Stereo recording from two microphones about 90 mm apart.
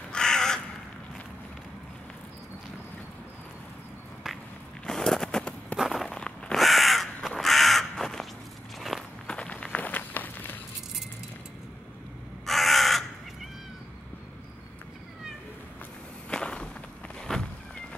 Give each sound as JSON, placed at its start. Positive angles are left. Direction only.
{"t": 0.1, "sound": "crow", "side_deg": 5}
{"t": 4.8, "sound": "a sound", "side_deg": 5}
{"t": 5.8, "sound": "crow", "side_deg": 0}
{"t": 8.7, "sound": "walk", "side_deg": 0}
{"t": 9.3, "sound": "walk", "side_deg": 15}
{"t": 12.4, "sound": "crow", "side_deg": 0}
{"t": 16.3, "sound": "walk", "side_deg": 10}
{"t": 17.2, "sound": "cat", "side_deg": 10}